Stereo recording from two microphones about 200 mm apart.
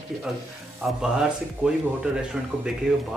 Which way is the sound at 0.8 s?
5° right (ahead or behind).